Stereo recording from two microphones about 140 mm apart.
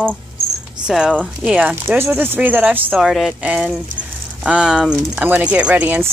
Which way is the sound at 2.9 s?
Centre (ahead or behind).